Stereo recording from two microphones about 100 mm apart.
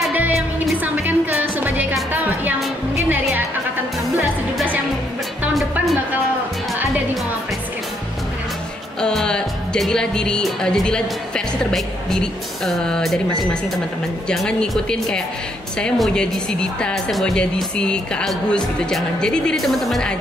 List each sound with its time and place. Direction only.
0.8 s a woman's voice: 20° right (ahead or behind)
2.1 s music: 20° right (ahead or behind)
5.5 s music: centre (ahead or behind)
9.0 s music: 10° left (ahead or behind)
14.3 s speech: 5° left (ahead or behind)